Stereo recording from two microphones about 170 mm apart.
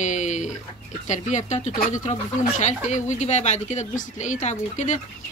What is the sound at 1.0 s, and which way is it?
Speech, 45° left (ahead or behind).